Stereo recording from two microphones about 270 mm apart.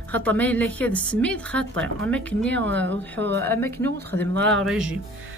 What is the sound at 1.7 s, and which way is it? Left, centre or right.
Speech, right.